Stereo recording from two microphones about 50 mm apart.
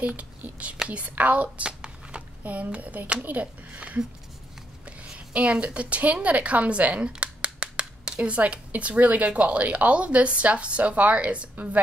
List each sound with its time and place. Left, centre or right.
0.0 s a woman's voice: right